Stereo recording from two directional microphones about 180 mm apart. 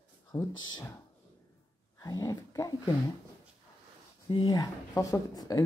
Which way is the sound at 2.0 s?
20° left (ahead or behind).